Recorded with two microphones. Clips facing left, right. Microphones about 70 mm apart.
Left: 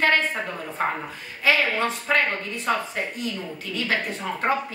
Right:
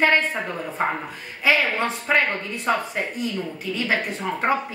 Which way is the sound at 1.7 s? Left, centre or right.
Centre.